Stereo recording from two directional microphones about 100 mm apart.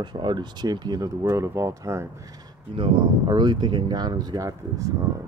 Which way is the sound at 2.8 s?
50° right (ahead or behind).